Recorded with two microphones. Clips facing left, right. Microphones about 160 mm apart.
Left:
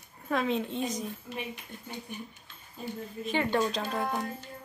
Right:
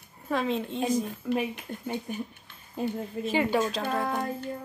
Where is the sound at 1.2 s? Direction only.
60° right (ahead or behind).